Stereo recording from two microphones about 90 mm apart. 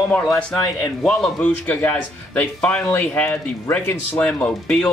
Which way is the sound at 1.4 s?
20° left (ahead or behind).